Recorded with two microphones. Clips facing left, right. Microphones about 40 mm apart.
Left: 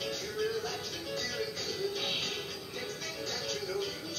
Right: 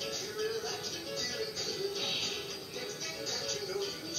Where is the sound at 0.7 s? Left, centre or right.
Left.